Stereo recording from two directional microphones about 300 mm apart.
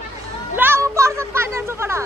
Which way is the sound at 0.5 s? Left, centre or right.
Centre.